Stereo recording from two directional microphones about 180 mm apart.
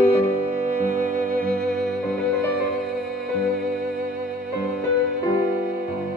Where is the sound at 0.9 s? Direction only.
50° right (ahead or behind).